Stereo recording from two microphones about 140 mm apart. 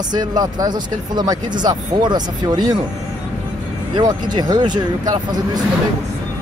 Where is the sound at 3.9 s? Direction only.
30° right (ahead or behind).